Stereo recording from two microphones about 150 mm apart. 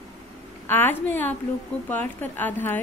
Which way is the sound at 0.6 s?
15° left (ahead or behind).